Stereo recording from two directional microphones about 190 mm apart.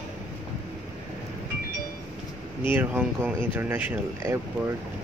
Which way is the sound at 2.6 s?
10° right (ahead or behind).